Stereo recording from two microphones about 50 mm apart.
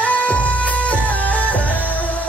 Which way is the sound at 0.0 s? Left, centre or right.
Left.